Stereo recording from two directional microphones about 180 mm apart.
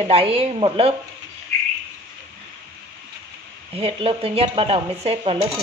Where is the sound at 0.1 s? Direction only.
30° right (ahead or behind).